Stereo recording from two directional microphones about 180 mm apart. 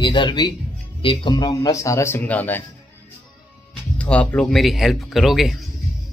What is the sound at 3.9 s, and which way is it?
Speech, 5° left (ahead or behind).